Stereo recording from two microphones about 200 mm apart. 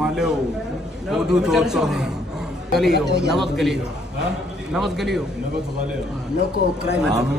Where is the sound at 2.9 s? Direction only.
55° right (ahead or behind).